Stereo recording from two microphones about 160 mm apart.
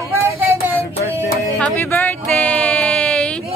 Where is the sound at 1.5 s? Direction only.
10° left (ahead or behind).